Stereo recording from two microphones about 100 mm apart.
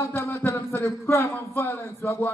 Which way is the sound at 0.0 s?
25° left (ahead or behind).